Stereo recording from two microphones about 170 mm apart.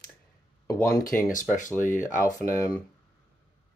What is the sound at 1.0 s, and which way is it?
Speech, 55° left (ahead or behind).